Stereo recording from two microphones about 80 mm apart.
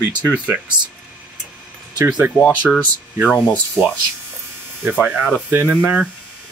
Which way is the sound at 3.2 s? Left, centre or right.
Centre.